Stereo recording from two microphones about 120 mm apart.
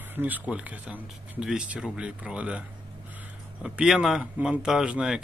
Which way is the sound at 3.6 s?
5° right (ahead or behind).